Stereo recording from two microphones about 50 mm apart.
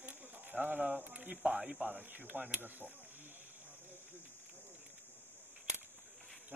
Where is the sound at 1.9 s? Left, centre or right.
Right.